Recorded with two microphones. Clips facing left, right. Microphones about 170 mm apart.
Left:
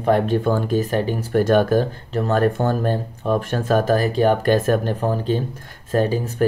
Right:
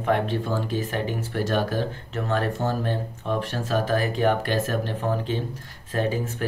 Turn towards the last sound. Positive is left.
turn(degrees=35)  # may be behind; listen again after turning